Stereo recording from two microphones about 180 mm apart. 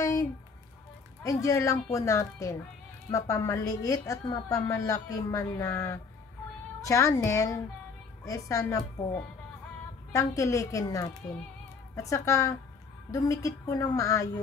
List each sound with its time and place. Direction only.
0.0 s music: 20° left (ahead or behind)
1.2 s a woman's voice: 20° left (ahead or behind)
10.1 s a woman's voice: 20° left (ahead or behind)